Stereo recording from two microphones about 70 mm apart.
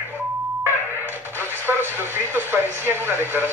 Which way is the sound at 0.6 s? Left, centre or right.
Right.